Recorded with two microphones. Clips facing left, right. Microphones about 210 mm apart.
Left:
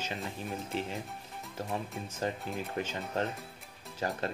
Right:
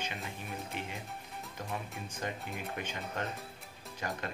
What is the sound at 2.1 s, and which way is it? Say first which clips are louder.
Speech: left 5 dB; 35° left (ahead or behind).